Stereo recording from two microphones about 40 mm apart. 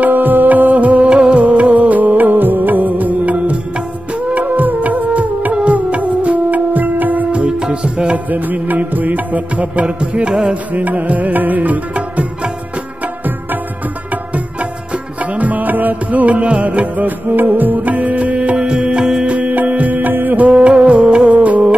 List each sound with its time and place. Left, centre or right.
0.1 s music: right
1.1 s music: right
1.4 s music: right
7.2 s music: right
8.3 s music: right
10.5 s music: right
14.1 s music: right
18.6 s music: right
19.2 s music: right
20.4 s music: right